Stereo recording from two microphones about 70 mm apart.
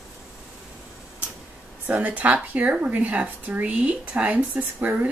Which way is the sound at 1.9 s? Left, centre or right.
Right.